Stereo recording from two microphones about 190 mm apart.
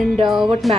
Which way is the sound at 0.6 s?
Centre (ahead or behind).